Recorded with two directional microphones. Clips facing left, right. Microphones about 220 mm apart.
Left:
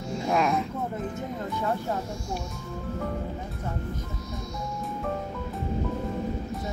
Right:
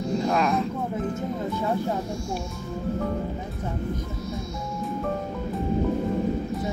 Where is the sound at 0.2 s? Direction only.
5° left (ahead or behind).